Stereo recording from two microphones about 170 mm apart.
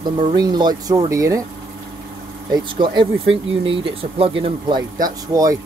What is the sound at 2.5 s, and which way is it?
Speech, 25° right (ahead or behind).